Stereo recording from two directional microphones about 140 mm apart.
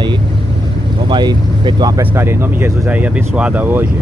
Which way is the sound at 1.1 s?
35° right (ahead or behind).